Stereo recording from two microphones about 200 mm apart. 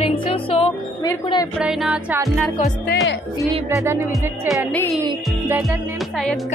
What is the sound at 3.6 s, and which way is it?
Music, 15° right (ahead or behind).